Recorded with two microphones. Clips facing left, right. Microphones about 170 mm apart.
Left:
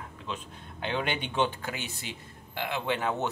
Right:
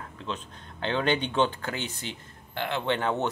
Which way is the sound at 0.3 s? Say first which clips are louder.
Right 2 dB; 10° left (ahead or behind).